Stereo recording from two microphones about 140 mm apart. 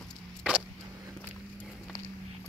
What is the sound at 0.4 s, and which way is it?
Vehicle, 10° right (ahead or behind).